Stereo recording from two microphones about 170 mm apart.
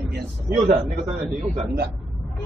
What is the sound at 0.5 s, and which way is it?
Speech, 50° right (ahead or behind).